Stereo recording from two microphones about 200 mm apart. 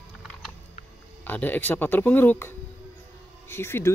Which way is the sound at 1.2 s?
10° left (ahead or behind).